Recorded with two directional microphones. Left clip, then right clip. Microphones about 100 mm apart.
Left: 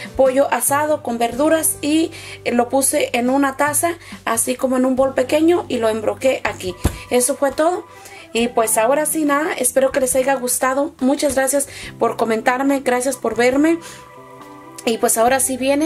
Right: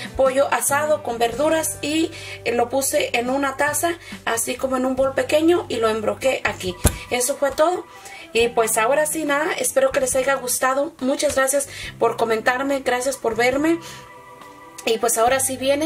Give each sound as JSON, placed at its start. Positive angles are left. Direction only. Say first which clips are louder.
{"t": 0.2, "sound": "a woman's voice", "louder": "left 3 dB", "side_deg": 40}
{"t": 14.9, "sound": "a woman's voice", "louder": "left 2 dB", "side_deg": 45}